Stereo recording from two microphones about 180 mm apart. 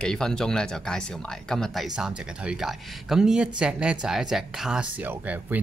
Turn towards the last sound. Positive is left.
turn(degrees=-5)  # may be behind; listen again after turning